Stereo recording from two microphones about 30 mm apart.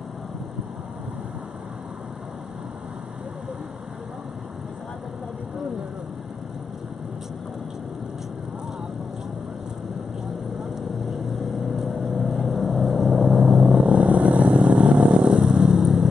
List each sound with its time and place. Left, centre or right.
10.6 s vehicle: centre
13.7 s vehicle: right
14.5 s vehicle: right
15.0 s vehicle: right